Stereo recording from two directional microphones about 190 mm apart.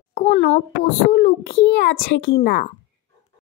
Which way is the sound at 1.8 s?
60° left (ahead or behind).